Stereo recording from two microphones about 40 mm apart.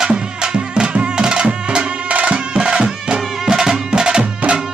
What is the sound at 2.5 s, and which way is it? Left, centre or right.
Music, centre.